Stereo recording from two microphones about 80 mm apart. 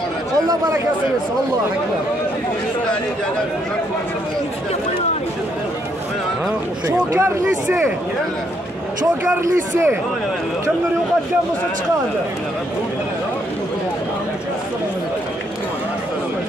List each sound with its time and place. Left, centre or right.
7.1 s speech: right
9.3 s speech: right